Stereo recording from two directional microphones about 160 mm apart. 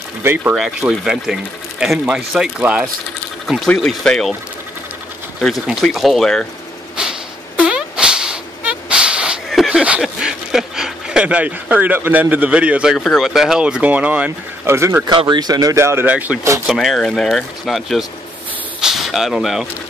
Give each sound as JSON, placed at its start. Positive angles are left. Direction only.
{"t": 0.2, "sound": "speech", "side_deg": -15}
{"t": 3.4, "sound": "speech", "side_deg": 5}
{"t": 5.4, "sound": "speech", "side_deg": 0}
{"t": 7.0, "sound": "a sound", "side_deg": -5}
{"t": 15.1, "sound": "speech", "side_deg": -25}
{"t": 16.6, "sound": "speech", "side_deg": 0}